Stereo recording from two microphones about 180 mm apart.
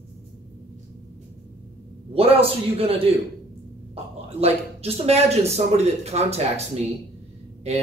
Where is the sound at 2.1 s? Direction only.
35° right (ahead or behind).